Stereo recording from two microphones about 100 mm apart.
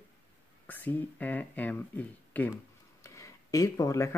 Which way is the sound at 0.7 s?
20° left (ahead or behind).